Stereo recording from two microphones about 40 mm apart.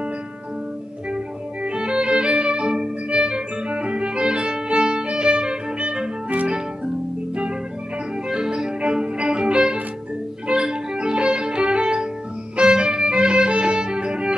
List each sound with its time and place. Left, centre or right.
1.1 s violin: right
8.3 s music: centre